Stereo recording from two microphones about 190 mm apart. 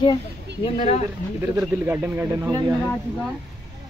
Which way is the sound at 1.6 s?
5° right (ahead or behind).